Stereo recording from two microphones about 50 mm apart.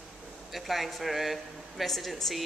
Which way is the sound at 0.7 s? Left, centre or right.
Centre.